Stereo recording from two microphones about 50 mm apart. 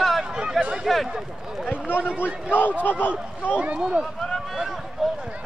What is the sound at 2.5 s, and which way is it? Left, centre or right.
Speech, left.